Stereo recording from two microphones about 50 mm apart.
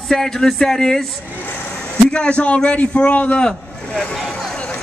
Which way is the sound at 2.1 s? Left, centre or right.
Left.